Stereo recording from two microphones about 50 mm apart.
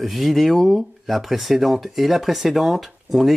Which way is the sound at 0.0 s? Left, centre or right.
Centre.